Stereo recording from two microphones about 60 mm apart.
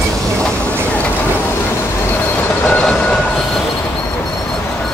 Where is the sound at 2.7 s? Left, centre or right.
Left.